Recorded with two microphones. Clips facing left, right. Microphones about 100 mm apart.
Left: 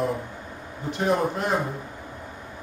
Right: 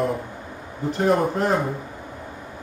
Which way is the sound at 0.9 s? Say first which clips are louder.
Right 3 dB; 40° right (ahead or behind).